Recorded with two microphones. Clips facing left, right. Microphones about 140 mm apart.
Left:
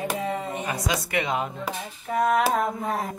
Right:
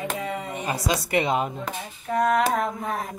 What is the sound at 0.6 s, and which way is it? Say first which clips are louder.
Speech: right 2 dB; 30° right (ahead or behind).